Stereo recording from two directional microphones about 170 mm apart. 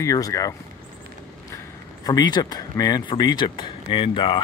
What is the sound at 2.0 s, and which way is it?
Speech, 25° left (ahead or behind).